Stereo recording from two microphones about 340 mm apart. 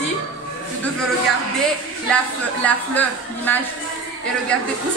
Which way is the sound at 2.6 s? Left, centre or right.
Centre.